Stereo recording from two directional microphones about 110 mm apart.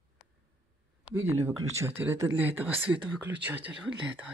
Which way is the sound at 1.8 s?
25° right (ahead or behind).